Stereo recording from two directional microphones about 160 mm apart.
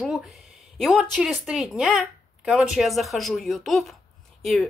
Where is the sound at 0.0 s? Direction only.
Centre (ahead or behind).